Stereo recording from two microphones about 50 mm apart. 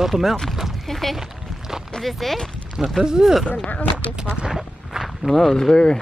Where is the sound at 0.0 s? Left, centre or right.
Centre.